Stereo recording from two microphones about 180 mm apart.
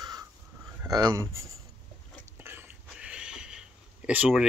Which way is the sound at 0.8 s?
20° right (ahead or behind).